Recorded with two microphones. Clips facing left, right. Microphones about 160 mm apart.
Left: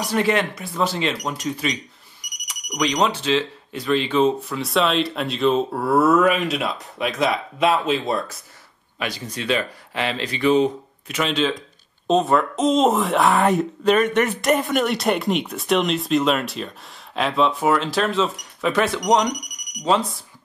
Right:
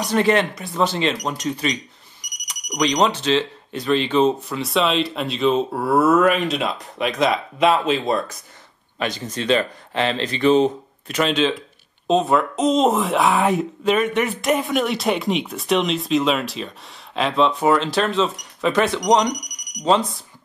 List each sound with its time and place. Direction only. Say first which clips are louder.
0.8 s speech: right 2 dB; 5° left (ahead or behind)
2.2 s a sound: right 2 dB; centre (ahead or behind)
3.9 s speech: right 1 dB; centre (ahead or behind)
9.0 s speech: right 3 dB; 20° right (ahead or behind)
11.2 s speech: right 1 dB; centre (ahead or behind)